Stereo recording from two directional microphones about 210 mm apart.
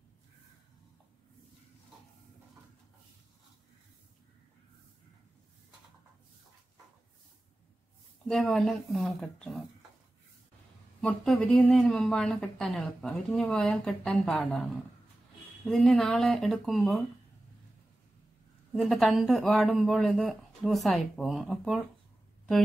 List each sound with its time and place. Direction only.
8.3 s a woman's voice: centre (ahead or behind)
11.0 s a woman's voice: 5° left (ahead or behind)
15.6 s a woman's voice: 5° left (ahead or behind)
18.7 s a woman's voice: centre (ahead or behind)